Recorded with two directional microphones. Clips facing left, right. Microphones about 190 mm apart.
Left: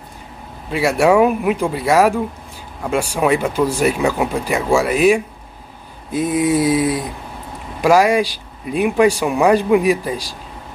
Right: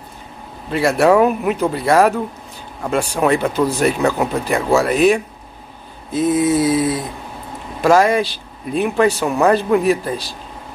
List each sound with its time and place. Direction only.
0.7 s speech: 5° left (ahead or behind)